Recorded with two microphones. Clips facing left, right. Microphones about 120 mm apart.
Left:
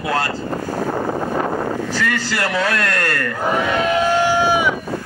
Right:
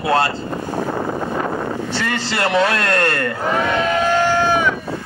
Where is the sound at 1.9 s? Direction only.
25° right (ahead or behind).